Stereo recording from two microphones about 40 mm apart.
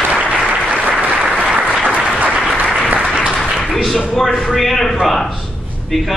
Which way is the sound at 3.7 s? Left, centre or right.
Centre.